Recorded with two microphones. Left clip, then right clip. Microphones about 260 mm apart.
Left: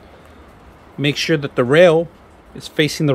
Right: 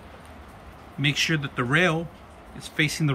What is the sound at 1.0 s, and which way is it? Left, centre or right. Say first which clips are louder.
Speech: left 6 dB; left.